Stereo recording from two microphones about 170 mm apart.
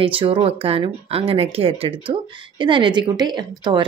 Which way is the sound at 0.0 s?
30° right (ahead or behind).